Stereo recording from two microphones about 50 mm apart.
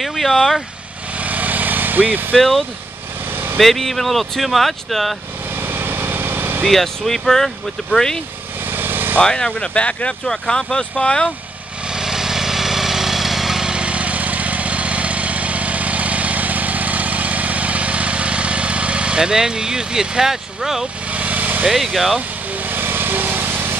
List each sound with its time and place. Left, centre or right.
0.0 s speech: centre
1.2 s vehicle: right
2.3 s speech: centre
5.6 s vehicle: right
6.6 s speech: centre
8.6 s vehicle: right
9.2 s speech: centre
10.2 s speech: centre
11.9 s vehicle: centre
21.1 s vehicle: right
21.6 s speech: centre
22.6 s lawn mower: right